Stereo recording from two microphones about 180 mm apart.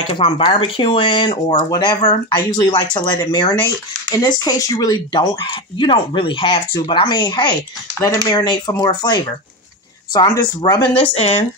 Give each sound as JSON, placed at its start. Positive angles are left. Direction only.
{"t": 0.1, "sound": "speech", "side_deg": 30}
{"t": 10.4, "sound": "speech", "side_deg": 20}